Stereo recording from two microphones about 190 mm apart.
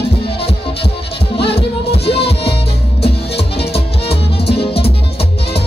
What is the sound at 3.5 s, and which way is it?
Music, 30° left (ahead or behind).